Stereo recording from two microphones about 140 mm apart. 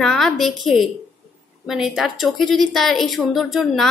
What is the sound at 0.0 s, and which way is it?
A woman's voice, centre (ahead or behind).